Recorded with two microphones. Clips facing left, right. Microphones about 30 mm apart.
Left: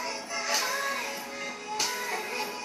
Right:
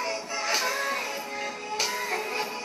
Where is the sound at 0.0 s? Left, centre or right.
Right.